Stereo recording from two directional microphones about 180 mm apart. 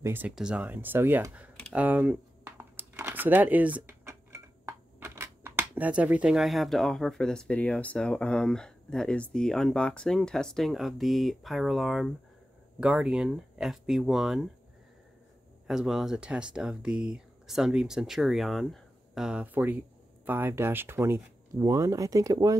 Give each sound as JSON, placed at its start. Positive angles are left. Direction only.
{"t": 0.0, "sound": "speech", "side_deg": -10}
{"t": 15.6, "sound": "speech", "side_deg": -5}